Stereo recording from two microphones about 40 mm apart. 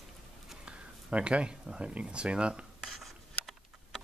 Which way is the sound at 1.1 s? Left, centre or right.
Right.